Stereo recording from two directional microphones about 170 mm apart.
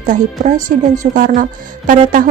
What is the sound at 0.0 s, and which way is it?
A woman's voice, 45° right (ahead or behind).